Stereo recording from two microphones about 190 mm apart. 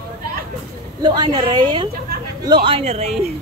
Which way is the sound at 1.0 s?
25° right (ahead or behind).